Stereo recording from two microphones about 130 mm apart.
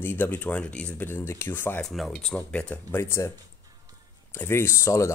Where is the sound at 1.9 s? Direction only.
5° left (ahead or behind); by 5.1 s 20° left (ahead or behind).